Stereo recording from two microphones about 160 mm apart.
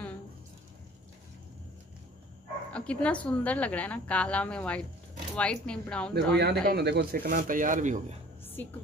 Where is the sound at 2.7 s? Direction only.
5° left (ahead or behind).